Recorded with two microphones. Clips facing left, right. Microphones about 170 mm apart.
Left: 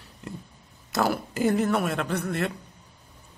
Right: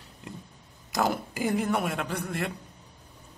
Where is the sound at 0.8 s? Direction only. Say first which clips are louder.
Left 2 dB; 15° right (ahead or behind).